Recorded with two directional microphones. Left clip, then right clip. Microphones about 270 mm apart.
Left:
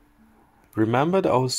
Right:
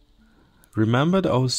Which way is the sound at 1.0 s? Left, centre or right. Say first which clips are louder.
Left 2 dB; right.